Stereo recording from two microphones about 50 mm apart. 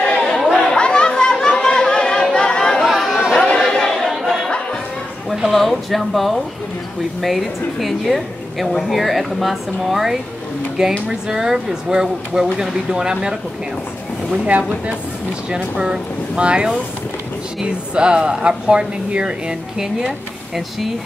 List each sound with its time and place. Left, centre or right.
0.0 s chatter: centre
0.4 s chatter: centre
0.7 s chatter: centre
2.8 s chatter: centre
3.3 s chatter: centre
5.3 s a woman's voice: centre
15.5 s speech: centre